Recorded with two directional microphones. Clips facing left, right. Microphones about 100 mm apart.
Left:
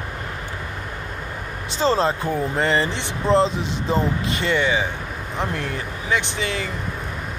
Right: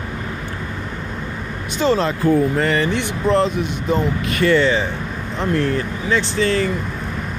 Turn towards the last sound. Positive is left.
turn(degrees=15)  # may be behind; listen again after turning